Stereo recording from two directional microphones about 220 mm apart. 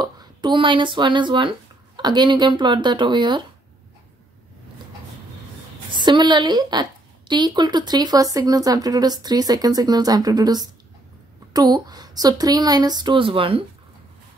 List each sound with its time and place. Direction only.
0.0 s speech: 20° right (ahead or behind)
5.9 s a woman's voice: 20° right (ahead or behind)